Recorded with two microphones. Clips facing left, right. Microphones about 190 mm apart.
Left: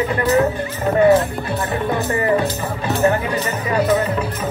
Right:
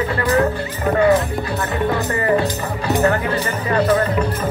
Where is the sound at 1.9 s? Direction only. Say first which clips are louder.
Left 1 dB; 20° left (ahead or behind).